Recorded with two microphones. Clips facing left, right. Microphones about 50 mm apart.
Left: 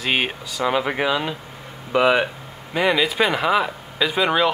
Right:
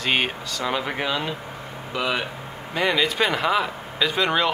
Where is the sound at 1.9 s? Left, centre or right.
Left.